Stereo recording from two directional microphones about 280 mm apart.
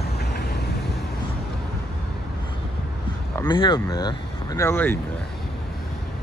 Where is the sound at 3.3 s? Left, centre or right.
Centre.